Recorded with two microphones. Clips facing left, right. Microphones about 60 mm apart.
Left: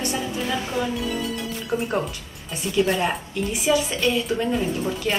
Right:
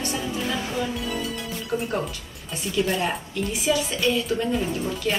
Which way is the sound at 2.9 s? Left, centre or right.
Centre.